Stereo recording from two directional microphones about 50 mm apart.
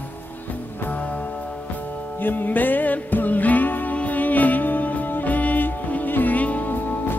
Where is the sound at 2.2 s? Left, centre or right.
Left.